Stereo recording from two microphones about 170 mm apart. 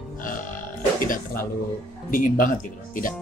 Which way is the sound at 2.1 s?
55° left (ahead or behind).